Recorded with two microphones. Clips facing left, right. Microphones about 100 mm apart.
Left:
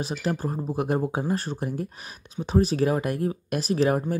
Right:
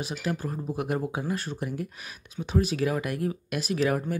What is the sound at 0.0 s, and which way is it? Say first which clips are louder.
Speech: left 3 dB; 35° left (ahead or behind).